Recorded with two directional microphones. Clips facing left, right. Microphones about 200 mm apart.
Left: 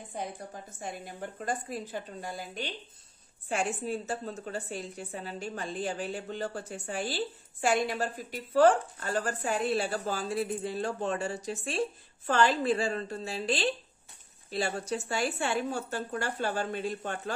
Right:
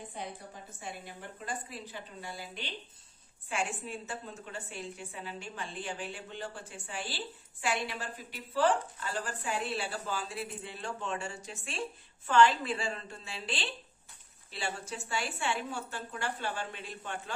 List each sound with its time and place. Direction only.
0.7 s a woman's voice: 45° left (ahead or behind)